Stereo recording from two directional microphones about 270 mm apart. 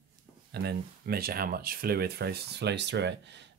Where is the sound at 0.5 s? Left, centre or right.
Right.